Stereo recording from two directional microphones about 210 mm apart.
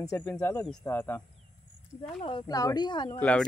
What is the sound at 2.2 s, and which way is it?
Speech, 25° left (ahead or behind).